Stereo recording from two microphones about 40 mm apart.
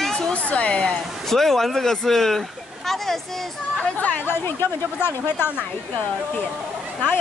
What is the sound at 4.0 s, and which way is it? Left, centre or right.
Speech, left.